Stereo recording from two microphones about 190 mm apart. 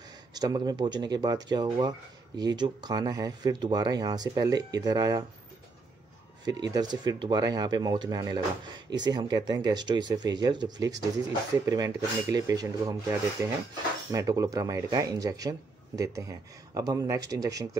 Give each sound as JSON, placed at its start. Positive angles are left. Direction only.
{"t": 0.3, "sound": "speech", "side_deg": -20}
{"t": 6.4, "sound": "speech", "side_deg": -20}
{"t": 14.1, "sound": "speech", "side_deg": -15}